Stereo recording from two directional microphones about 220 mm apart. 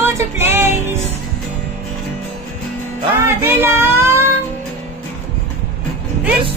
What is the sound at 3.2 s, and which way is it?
Child singing, 10° right (ahead or behind).